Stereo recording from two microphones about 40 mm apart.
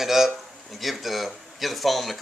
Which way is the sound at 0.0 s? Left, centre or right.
Centre.